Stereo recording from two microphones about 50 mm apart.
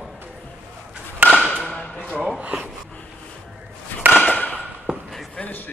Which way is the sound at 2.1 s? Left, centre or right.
Centre.